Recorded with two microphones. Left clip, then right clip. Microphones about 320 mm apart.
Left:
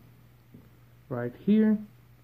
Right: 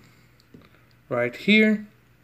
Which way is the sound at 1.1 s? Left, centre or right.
Centre.